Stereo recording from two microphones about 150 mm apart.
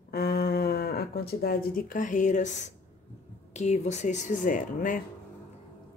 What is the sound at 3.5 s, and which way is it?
Speech, 50° left (ahead or behind).